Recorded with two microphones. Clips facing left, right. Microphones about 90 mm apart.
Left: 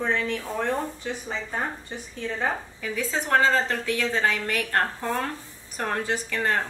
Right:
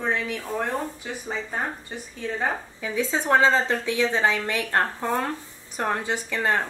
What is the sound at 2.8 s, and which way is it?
A woman's voice, 20° right (ahead or behind).